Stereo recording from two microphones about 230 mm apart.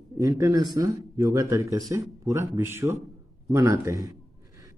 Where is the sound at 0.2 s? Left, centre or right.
Centre.